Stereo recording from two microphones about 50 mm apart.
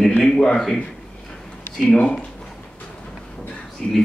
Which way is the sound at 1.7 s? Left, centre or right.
Left.